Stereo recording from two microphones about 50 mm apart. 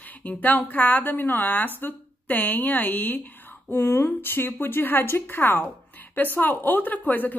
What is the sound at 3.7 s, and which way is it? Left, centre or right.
A woman's voice, left.